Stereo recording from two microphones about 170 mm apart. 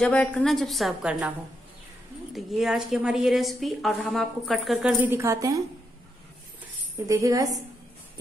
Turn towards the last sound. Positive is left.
turn(degrees=-20)  # may be behind; listen again after turning